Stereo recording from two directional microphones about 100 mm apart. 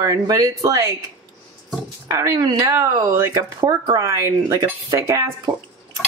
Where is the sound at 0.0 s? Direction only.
35° right (ahead or behind).